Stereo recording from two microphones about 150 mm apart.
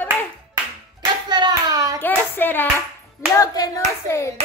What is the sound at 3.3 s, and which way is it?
Clapping, 25° left (ahead or behind).